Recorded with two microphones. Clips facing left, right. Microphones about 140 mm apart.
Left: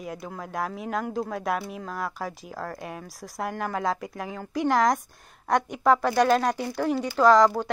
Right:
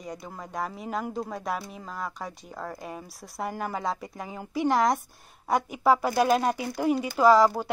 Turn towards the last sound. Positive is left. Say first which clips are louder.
# left 1 dB
turn(degrees=-5)  # may be behind; listen again after turning